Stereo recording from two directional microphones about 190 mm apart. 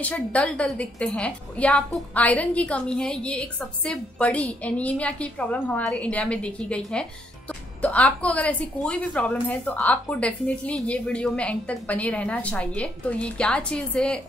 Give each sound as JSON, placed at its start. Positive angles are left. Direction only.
{"t": 0.0, "sound": "a woman's voice", "side_deg": 5}